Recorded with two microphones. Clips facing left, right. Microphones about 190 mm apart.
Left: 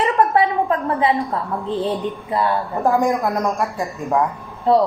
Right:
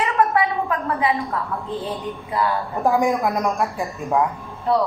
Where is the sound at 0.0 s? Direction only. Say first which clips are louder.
Left 3 dB; 30° left (ahead or behind).